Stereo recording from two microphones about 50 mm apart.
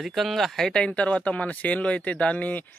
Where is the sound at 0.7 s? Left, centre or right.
Centre.